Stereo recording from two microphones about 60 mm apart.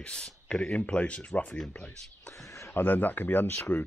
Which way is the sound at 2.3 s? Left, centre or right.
Left.